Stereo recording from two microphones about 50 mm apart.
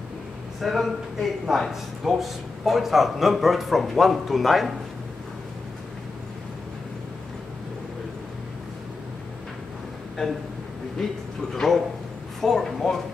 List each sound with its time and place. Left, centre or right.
0.6 s a man's voice: centre
10.2 s speech: centre
11.0 s a man's voice: centre